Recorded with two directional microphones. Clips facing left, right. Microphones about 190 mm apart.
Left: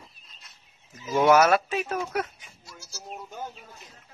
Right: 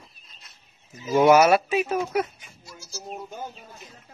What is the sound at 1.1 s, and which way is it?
Speech, 5° right (ahead or behind).